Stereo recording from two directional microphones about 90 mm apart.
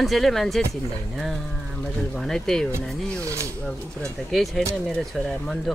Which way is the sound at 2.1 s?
5° left (ahead or behind).